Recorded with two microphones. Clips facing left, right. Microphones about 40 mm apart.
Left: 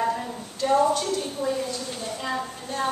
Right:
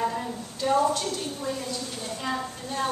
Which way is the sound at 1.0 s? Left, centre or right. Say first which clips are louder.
Left 4 dB; centre.